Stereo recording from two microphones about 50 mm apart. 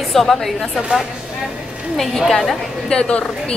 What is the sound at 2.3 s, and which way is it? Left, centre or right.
Speech, centre.